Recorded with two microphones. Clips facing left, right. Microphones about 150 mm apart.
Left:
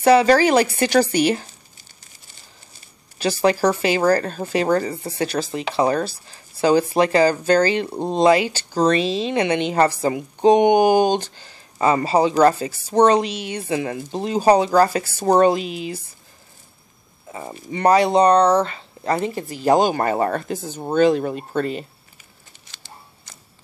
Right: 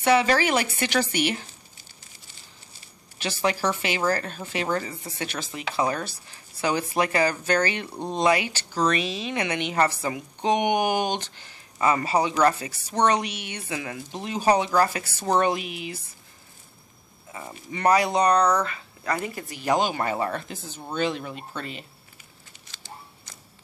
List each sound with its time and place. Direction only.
0.0 s speech: 35° left (ahead or behind)
3.2 s speech: 35° left (ahead or behind)
17.3 s speech: 30° left (ahead or behind)